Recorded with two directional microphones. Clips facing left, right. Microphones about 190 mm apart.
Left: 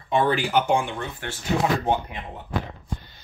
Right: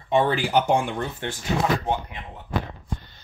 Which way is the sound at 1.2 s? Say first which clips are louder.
Right 3 dB; 20° right (ahead or behind).